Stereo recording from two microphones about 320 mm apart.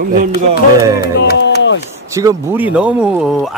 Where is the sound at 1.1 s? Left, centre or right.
Left.